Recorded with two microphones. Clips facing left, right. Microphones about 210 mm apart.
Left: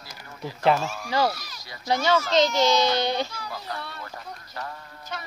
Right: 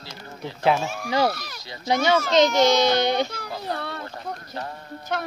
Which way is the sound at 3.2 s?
55° right (ahead or behind).